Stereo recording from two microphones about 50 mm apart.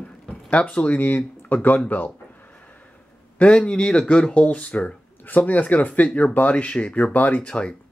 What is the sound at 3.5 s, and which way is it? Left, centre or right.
A man's voice, centre.